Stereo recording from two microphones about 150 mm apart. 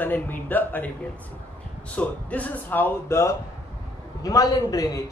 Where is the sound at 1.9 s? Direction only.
10° left (ahead or behind).